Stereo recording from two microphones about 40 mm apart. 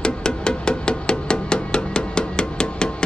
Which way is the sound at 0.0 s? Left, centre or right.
Left.